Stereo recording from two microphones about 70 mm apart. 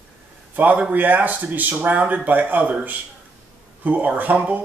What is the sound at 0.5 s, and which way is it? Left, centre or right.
A man's voice, right.